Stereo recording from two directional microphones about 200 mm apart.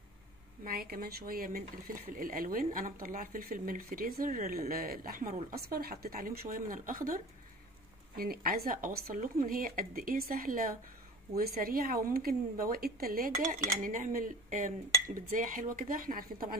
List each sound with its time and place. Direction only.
0.7 s speech: 45° right (ahead or behind)
8.2 s speech: 50° right (ahead or behind)